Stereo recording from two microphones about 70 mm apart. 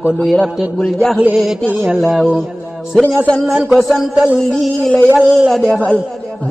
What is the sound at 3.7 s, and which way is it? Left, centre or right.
A man's voice, centre.